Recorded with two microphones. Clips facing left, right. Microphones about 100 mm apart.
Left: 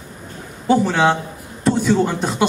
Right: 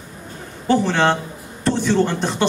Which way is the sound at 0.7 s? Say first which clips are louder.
Left 1 dB; 5° left (ahead or behind).